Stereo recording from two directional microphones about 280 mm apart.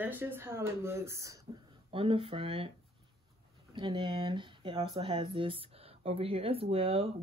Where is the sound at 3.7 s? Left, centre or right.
Centre.